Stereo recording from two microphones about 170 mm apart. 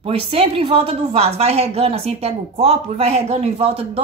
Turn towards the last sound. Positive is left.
turn(degrees=-35)  # may be behind; listen again after turning